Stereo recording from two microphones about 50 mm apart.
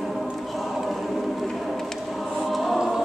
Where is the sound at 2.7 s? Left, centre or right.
Centre.